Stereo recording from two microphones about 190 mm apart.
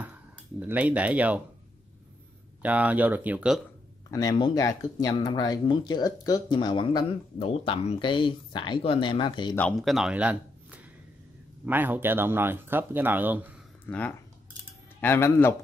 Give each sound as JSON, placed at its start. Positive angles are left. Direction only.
{"t": 0.6, "sound": "speech", "side_deg": -10}
{"t": 2.6, "sound": "speech", "side_deg": -10}
{"t": 4.1, "sound": "speech", "side_deg": 20}
{"t": 9.6, "sound": "speech", "side_deg": 5}
{"t": 13.8, "sound": "speech", "side_deg": 10}